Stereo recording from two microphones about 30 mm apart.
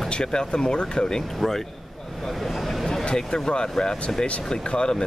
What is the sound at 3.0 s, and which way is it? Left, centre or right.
Speech, left.